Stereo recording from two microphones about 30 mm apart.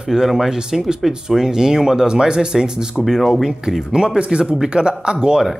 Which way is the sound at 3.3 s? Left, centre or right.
Centre.